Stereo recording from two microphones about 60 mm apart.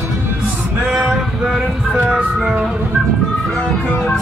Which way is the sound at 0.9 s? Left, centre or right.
Centre.